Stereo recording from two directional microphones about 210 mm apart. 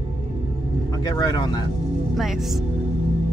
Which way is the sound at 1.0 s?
20° left (ahead or behind).